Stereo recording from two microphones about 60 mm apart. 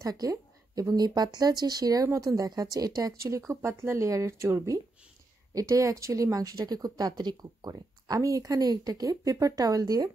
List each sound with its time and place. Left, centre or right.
0.0 s speech: right
2.1 s speech: right
5.5 s speech: right
8.1 s speech: right